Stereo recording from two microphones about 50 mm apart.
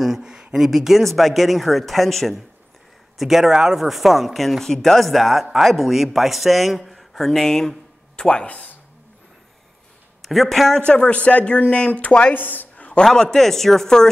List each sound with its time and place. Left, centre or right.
0.0 s a sound: centre
0.7 s speech: centre
8.2 s speech: left
10.2 s speech: centre
10.9 s speech: left
12.4 s speech: left
12.7 s a sound: left
13.0 s speech: centre